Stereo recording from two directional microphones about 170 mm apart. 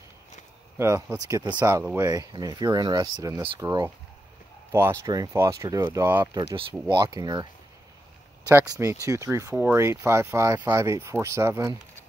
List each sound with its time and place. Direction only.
0.7 s speech: 15° right (ahead or behind)
8.5 s speech: 20° right (ahead or behind)